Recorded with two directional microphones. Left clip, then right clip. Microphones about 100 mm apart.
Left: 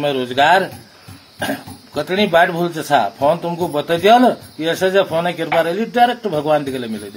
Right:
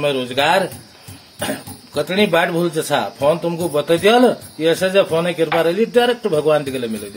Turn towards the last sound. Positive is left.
turn(degrees=-35)  # may be behind; listen again after turning